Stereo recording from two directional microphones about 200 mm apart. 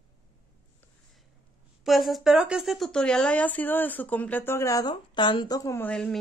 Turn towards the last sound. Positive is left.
turn(degrees=5)  # may be behind; listen again after turning